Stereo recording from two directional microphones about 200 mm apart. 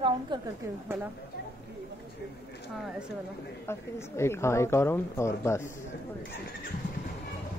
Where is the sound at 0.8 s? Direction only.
10° right (ahead or behind).